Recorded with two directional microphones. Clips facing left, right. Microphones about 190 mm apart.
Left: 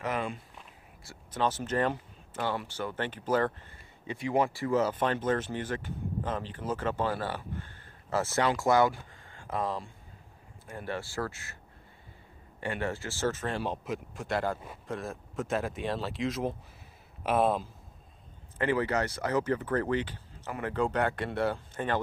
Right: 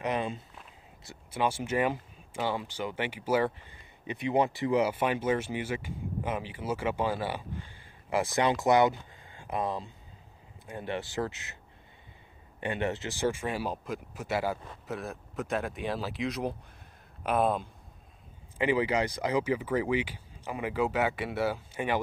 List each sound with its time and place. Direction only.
0.0 s walk: 20° right (ahead or behind)
1.0 s speech: 10° right (ahead or behind)
12.5 s speech: 20° right (ahead or behind); by 17.6 s centre (ahead or behind)
18.6 s speech: 10° right (ahead or behind)